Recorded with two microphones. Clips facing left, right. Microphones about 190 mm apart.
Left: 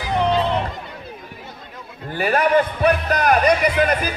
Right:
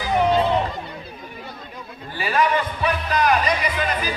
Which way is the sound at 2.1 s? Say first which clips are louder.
Left 4 dB; 50° left (ahead or behind).